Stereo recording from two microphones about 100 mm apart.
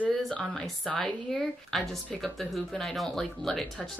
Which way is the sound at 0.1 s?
5° left (ahead or behind).